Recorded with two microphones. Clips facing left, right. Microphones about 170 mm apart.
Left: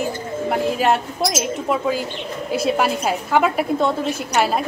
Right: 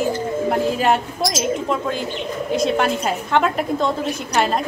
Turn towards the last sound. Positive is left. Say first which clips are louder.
# even
turn(degrees=5)  # may be behind; listen again after turning